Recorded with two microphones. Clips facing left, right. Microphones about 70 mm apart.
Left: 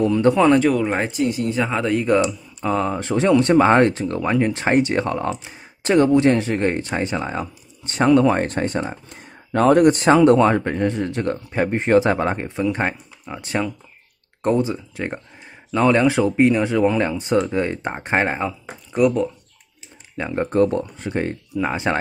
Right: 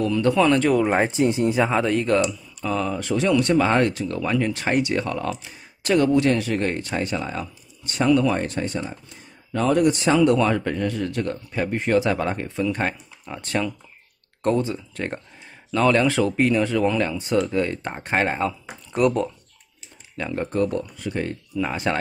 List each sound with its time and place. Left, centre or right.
0.0 s speech: left
0.6 s speech: centre
1.0 s speech: right
1.6 s speech: centre
2.0 s speech: centre
2.6 s speech: left
13.2 s speech: centre
18.9 s speech: centre
20.2 s speech: left